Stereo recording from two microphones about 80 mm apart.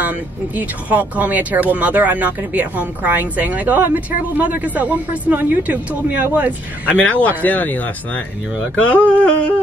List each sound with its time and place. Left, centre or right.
0.0 s speech: right
6.9 s speech: centre